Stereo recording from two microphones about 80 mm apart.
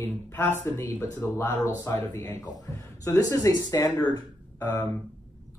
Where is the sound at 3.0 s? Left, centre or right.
Left.